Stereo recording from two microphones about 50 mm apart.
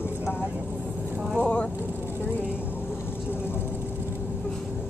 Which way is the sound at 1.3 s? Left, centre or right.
Left.